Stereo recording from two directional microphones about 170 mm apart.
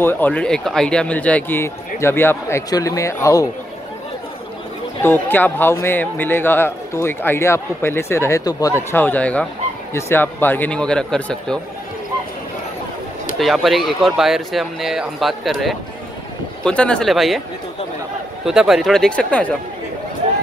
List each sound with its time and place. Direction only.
0.0 s a man's voice: 10° left (ahead or behind)
5.0 s a man's voice: 10° left (ahead or behind)
13.4 s speech: centre (ahead or behind)
18.4 s speech: 5° right (ahead or behind)